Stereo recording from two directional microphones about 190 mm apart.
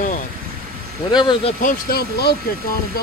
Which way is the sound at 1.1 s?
25° left (ahead or behind).